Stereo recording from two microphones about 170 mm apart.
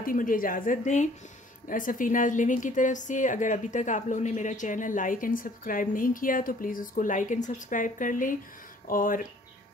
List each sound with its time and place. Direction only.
0.0 s a woman's voice: 55° left (ahead or behind)